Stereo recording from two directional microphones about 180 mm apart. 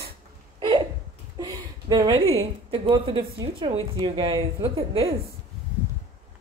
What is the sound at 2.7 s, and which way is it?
Speech, 30° right (ahead or behind).